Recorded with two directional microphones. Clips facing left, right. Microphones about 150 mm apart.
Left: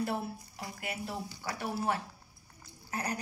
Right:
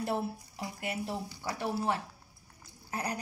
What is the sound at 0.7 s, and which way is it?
Speech, 30° right (ahead or behind).